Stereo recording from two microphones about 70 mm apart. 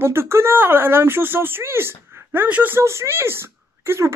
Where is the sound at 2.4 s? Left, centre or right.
Right.